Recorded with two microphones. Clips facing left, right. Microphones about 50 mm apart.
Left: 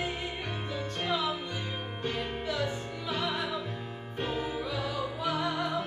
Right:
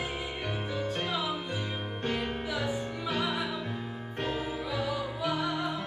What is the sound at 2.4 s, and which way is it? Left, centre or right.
Music, centre.